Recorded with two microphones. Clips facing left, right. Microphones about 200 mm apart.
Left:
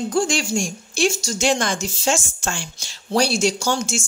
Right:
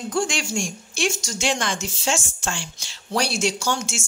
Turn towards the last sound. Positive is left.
turn(degrees=35)  # may be behind; listen again after turning